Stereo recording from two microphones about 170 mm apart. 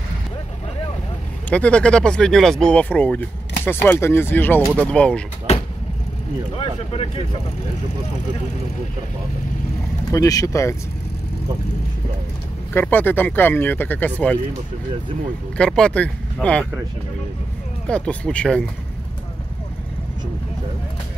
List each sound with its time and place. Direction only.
1.5 s speech: 5° left (ahead or behind)
5.5 s vehicle: 40° left (ahead or behind)
6.5 s speech: 35° left (ahead or behind)
10.1 s speech: 20° left (ahead or behind)
12.7 s speech: 10° left (ahead or behind)
15.5 s speech: 5° left (ahead or behind)
17.8 s speech: 5° left (ahead or behind)